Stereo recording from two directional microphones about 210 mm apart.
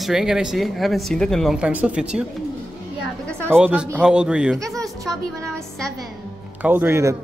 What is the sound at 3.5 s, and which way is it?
Speech, 5° right (ahead or behind).